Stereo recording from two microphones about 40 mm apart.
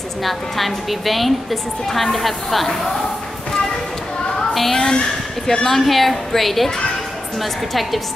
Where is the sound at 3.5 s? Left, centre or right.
Centre.